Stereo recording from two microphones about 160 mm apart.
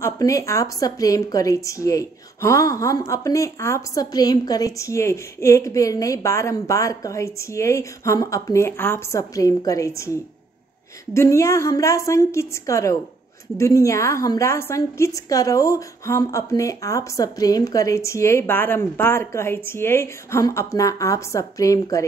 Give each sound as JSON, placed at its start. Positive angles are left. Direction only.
{"t": 0.0, "sound": "a woman's voice", "side_deg": 20}
{"t": 11.1, "sound": "a woman's voice", "side_deg": 20}